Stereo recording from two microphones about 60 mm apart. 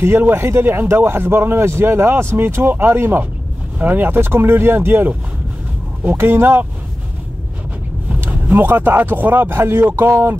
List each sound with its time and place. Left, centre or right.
0.0 s a man's voice: right
6.1 s a man's voice: right
8.2 s a man's voice: right